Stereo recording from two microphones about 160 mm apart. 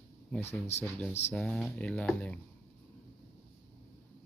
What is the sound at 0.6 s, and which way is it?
Speech, 15° left (ahead or behind).